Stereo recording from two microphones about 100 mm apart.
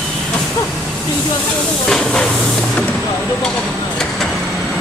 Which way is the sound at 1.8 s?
5° left (ahead or behind).